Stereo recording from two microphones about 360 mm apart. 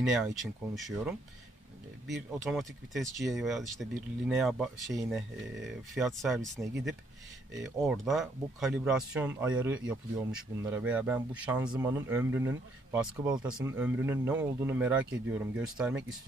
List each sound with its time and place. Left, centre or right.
0.0 s speech: centre